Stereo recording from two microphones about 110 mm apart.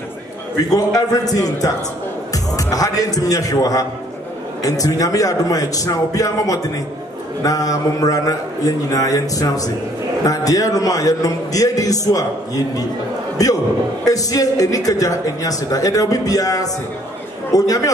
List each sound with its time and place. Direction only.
0.7 s a woman's voice: 35° left (ahead or behind)